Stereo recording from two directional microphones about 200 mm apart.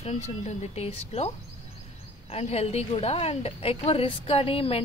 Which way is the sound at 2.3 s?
30° left (ahead or behind).